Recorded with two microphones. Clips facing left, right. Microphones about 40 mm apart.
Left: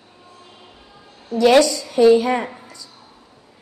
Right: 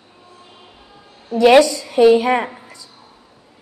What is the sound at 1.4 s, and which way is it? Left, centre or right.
A woman's voice, centre.